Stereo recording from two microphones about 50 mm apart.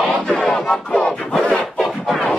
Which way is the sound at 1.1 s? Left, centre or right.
Centre.